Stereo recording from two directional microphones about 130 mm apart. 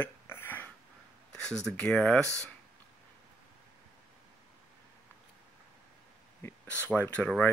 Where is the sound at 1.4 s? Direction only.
5° left (ahead or behind).